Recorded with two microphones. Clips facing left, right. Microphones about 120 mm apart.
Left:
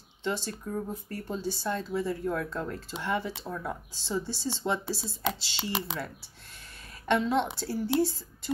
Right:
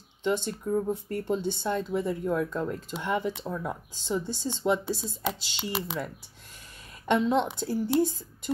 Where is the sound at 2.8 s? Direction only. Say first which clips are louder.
Right 2 dB; 15° right (ahead or behind).